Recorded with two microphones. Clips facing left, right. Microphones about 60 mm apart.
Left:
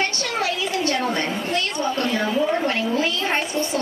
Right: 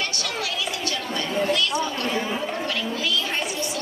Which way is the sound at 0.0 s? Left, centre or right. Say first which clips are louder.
Left 5 dB; left.